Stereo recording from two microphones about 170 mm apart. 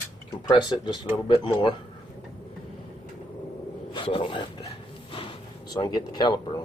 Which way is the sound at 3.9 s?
30° left (ahead or behind).